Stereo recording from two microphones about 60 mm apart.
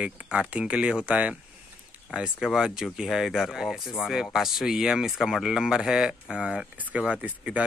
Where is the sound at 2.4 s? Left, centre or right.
Centre.